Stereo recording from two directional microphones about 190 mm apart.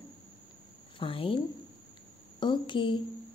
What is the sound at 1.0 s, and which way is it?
A woman's voice, 30° left (ahead or behind).